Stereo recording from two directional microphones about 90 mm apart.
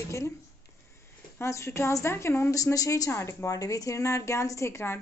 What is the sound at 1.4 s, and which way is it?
A woman's voice, 30° left (ahead or behind).